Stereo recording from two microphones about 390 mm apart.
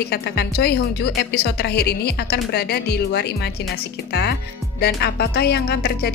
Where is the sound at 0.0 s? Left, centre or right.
Left.